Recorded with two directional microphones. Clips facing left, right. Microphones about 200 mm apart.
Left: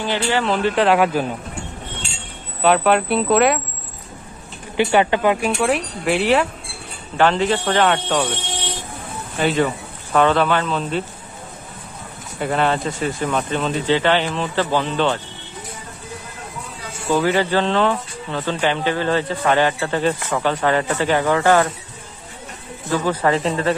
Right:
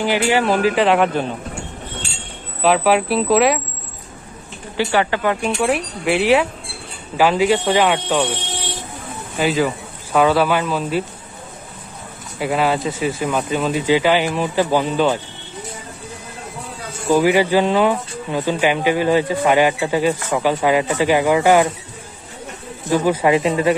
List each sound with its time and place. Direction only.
0.0 s speech: 15° right (ahead or behind)
2.6 s speech: centre (ahead or behind)
4.7 s speech: 20° left (ahead or behind)
5.4 s speech: centre (ahead or behind)
9.4 s speech: centre (ahead or behind)
12.4 s speech: 5° right (ahead or behind)
17.1 s speech: 15° right (ahead or behind)
22.8 s speech: 15° right (ahead or behind)